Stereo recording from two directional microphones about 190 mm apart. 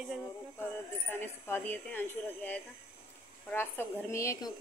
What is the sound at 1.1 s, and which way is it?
Speech, 10° left (ahead or behind).